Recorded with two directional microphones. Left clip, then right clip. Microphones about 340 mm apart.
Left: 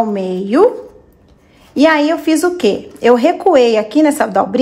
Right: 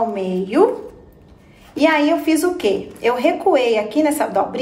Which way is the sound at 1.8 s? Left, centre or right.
Left.